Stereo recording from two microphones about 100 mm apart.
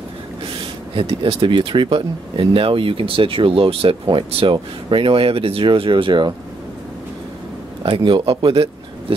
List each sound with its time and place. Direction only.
0.9 s speech: 65° right (ahead or behind)
7.8 s speech: 55° right (ahead or behind)